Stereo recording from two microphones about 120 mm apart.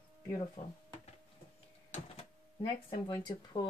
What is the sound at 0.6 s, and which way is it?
Speech, 80° left.